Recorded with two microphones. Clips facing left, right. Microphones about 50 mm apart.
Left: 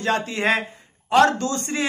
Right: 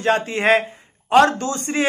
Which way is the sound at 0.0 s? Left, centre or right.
Right.